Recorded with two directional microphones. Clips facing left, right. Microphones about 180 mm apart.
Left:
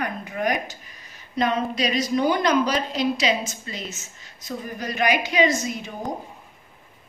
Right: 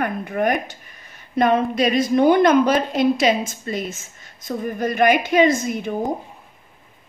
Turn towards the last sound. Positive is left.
turn(degrees=-55)  # may be behind; listen again after turning